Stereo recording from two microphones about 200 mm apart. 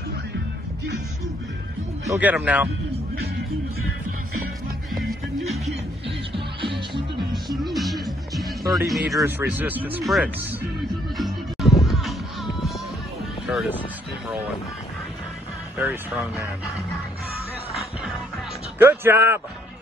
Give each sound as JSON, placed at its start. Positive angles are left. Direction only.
{"t": 2.0, "sound": "speech", "side_deg": -5}
{"t": 6.3, "sound": "music", "side_deg": -25}
{"t": 7.6, "sound": "music", "side_deg": 0}
{"t": 9.2, "sound": "speech", "side_deg": -10}
{"t": 11.1, "sound": "music", "side_deg": 0}
{"t": 13.5, "sound": "speech", "side_deg": 0}
{"t": 15.8, "sound": "speech", "side_deg": -10}
{"t": 18.8, "sound": "speech", "side_deg": -10}